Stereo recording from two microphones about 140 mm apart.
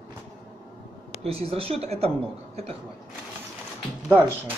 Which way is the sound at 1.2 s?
45° right (ahead or behind).